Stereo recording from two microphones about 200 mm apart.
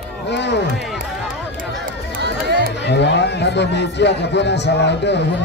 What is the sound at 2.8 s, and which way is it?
Speech, 60° left (ahead or behind).